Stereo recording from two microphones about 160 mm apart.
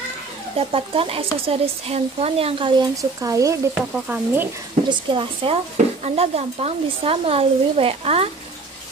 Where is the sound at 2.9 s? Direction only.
20° right (ahead or behind).